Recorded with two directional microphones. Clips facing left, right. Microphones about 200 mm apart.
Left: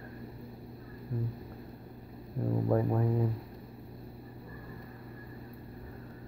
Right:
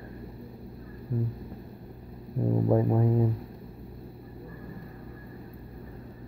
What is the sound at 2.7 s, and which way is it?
Speech, 20° right (ahead or behind).